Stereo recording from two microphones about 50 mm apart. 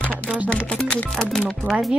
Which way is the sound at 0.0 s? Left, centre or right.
Left.